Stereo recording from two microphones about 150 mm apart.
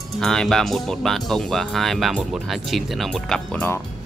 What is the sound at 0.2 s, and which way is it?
Speech, 5° left (ahead or behind).